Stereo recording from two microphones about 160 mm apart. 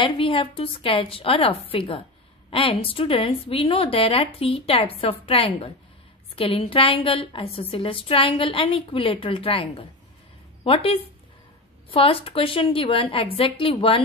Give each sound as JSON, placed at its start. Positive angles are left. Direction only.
{"t": 0.0, "sound": "a woman's voice", "side_deg": 35}